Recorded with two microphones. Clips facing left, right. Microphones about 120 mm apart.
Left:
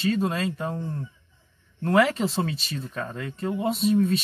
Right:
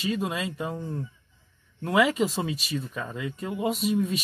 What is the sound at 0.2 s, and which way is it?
Speech, 40° left (ahead or behind).